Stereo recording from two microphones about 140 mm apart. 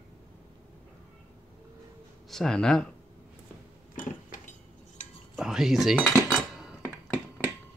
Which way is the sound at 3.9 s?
70° left (ahead or behind).